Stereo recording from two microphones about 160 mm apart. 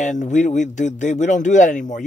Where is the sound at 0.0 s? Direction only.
50° left (ahead or behind).